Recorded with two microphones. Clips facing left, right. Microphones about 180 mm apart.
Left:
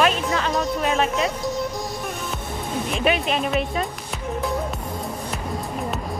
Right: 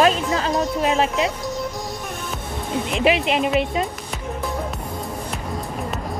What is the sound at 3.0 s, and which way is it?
Speech, 25° right (ahead or behind).